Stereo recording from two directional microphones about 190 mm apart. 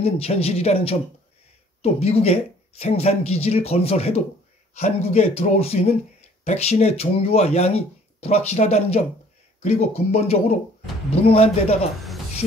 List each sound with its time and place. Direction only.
0.0 s speech: 30° left (ahead or behind)